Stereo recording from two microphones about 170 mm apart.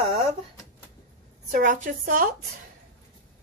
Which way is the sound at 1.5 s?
50° right (ahead or behind).